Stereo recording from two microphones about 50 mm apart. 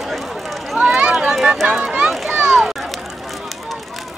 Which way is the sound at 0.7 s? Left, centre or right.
Centre.